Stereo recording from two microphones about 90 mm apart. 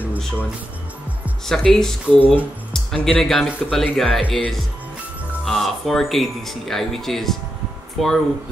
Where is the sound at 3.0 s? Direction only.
5° left (ahead or behind).